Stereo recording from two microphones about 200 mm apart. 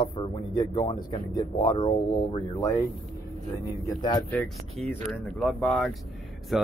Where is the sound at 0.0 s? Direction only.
20° left (ahead or behind).